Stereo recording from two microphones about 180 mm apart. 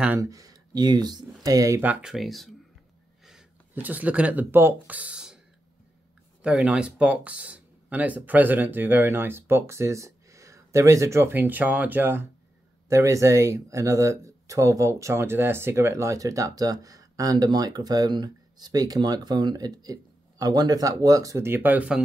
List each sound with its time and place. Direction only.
0.0 s speech: 15° right (ahead or behind)
6.4 s speech: 5° right (ahead or behind)